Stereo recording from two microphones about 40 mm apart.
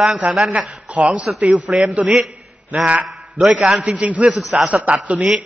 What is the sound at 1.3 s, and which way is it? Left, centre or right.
Speech, centre.